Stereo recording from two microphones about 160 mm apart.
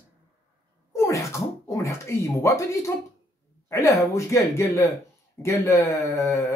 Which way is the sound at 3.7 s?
20° left (ahead or behind).